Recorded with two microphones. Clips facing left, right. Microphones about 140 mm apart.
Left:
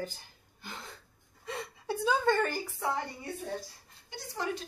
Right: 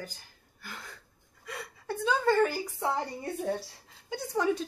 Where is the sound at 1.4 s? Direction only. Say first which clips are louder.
Left 3 dB; 25° left (ahead or behind).